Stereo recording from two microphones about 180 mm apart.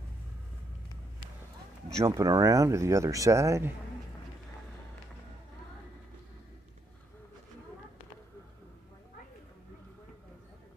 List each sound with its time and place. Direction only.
2.0 s speech: 20° right (ahead or behind)